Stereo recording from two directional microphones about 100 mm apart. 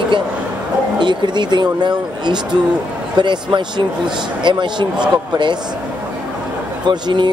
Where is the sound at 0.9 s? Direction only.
45° right (ahead or behind).